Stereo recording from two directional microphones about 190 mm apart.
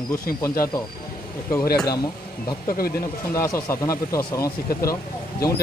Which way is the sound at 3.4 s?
15° left (ahead or behind).